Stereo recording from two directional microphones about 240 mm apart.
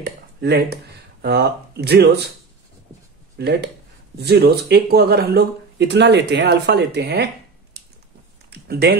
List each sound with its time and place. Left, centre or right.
0.0 s speech: right
3.3 s speech: right
8.5 s a sound: right